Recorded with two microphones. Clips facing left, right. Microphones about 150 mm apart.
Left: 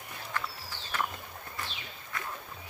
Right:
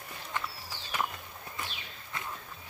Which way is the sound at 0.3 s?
20° right (ahead or behind).